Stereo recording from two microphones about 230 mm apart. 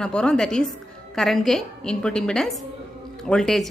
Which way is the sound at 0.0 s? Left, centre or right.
Centre.